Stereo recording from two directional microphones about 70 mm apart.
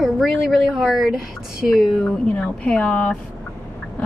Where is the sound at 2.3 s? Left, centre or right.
Centre.